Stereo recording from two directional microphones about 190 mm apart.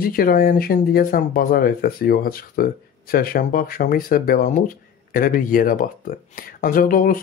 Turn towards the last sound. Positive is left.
turn(degrees=45)  # may be behind; listen again after turning